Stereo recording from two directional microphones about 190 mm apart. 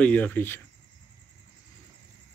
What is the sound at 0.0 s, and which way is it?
Speech, 10° left (ahead or behind).